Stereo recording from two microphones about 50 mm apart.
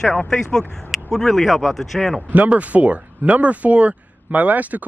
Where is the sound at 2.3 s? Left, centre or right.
Right.